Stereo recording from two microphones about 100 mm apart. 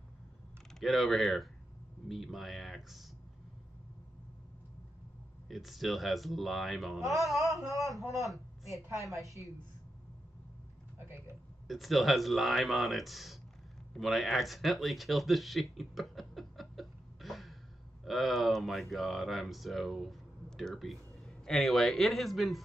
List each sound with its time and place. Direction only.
0.7 s speech: centre (ahead or behind)
5.5 s speech: centre (ahead or behind)
11.1 s speech: 25° right (ahead or behind)
11.6 s speech: centre (ahead or behind)
15.8 s a sound: centre (ahead or behind)
18.0 s speech: centre (ahead or behind)